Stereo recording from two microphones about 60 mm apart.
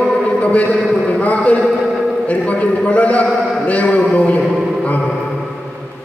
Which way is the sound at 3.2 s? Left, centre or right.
Centre.